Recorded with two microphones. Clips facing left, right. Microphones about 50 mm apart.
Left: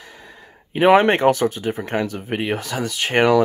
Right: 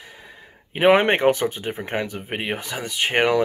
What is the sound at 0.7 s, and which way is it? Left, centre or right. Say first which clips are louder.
Speech: left 3 dB; centre.